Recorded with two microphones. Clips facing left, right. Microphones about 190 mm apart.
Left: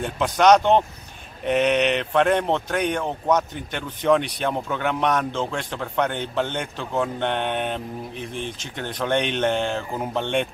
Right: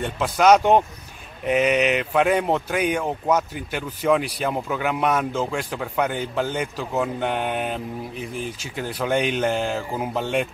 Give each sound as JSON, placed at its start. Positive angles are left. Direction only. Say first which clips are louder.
{"t": 0.0, "sound": "speech", "louder": "even", "side_deg": -5}